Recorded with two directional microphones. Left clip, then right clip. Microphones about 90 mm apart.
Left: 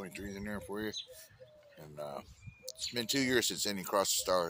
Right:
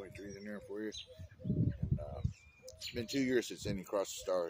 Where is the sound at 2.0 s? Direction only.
20° right (ahead or behind).